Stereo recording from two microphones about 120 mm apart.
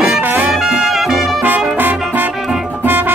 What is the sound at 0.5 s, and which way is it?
Music, centre (ahead or behind).